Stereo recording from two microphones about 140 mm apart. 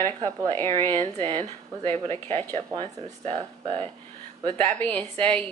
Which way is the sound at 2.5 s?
40° right (ahead or behind).